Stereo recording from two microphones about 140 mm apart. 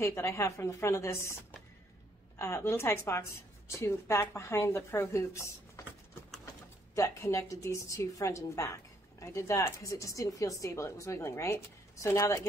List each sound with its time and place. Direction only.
0.0 s a woman's voice: 20° left (ahead or behind)
7.0 s a woman's voice: 20° left (ahead or behind)